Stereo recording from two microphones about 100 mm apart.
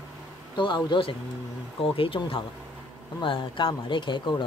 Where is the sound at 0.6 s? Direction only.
55° left (ahead or behind).